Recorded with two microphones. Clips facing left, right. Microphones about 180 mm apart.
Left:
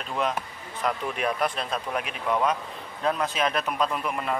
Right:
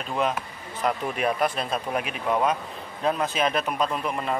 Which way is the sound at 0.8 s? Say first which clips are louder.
Right 2 dB; 5° right (ahead or behind).